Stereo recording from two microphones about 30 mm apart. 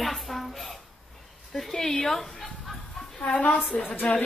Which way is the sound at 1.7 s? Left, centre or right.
Centre.